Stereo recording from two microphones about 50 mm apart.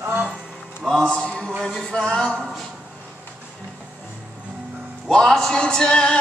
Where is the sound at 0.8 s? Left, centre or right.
Centre.